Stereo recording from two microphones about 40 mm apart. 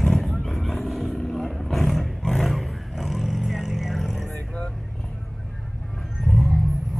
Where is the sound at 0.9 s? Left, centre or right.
Centre.